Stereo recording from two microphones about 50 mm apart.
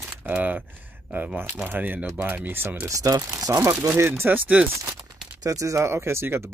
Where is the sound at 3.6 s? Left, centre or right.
Right.